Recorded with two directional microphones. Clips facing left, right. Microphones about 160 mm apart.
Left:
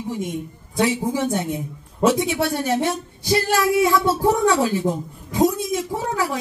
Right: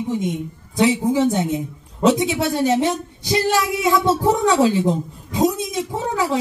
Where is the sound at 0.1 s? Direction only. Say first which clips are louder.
Right 1 dB; 20° right (ahead or behind).